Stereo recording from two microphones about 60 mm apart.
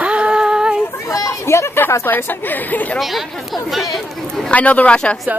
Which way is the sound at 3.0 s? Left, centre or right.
Centre.